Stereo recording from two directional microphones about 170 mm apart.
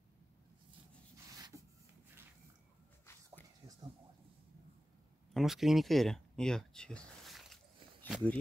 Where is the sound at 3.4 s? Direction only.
10° left (ahead or behind).